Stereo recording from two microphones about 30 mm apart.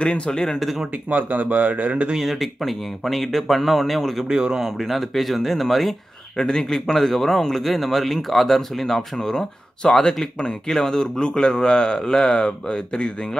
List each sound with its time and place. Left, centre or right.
0.0 s speech: left
1.1 s speech: right
2.3 s speech: centre
4.3 s speech: right
4.7 s speech: centre
6.3 s a man's voice: left